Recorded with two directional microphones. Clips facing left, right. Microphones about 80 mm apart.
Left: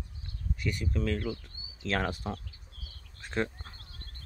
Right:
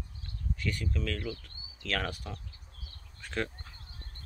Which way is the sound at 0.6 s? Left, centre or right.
Left.